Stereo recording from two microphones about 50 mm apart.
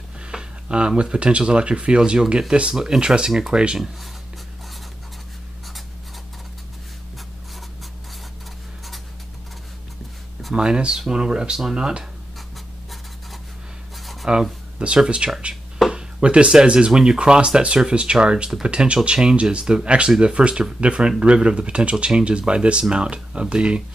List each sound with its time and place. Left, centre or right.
0.2 s speech: centre
10.5 s speech: centre
13.9 s writing: centre
15.0 s speech: centre
15.9 s a sound: centre
16.6 s speech: centre